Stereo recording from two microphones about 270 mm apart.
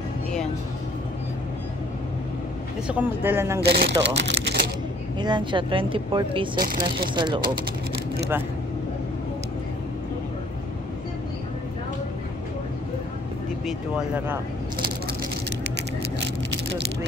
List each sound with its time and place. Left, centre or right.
2.9 s speech: centre
3.6 s speech: right
5.2 s speech: centre
13.7 s speech: centre